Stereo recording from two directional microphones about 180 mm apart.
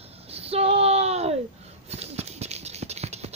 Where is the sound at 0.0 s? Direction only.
35° right (ahead or behind).